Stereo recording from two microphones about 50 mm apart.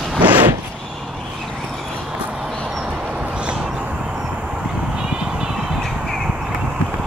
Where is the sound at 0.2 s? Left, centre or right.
Right.